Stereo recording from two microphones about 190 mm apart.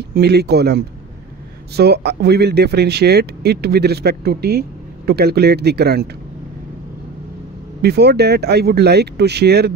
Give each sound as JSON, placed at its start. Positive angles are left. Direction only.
{"t": 0.1, "sound": "speech", "side_deg": -60}
{"t": 7.8, "sound": "speech", "side_deg": -60}